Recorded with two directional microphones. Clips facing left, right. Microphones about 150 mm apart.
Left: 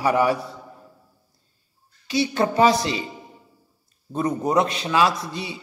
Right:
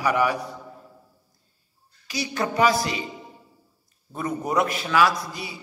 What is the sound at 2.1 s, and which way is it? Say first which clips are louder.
Speech: left 6 dB; 25° left (ahead or behind).